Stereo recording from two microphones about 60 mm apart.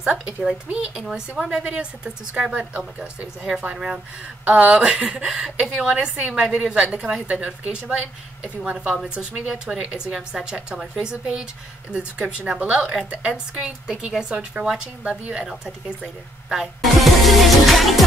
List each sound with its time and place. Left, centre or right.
0.0 s a woman's voice: centre
3.7 s a woman's voice: centre
8.6 s a woman's voice: centre
16.4 s music: centre